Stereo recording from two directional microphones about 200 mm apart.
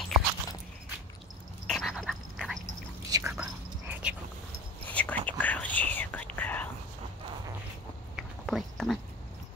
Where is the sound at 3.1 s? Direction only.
20° right (ahead or behind).